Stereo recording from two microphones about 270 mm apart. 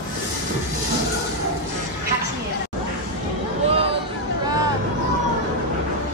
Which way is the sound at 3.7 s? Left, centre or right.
Right.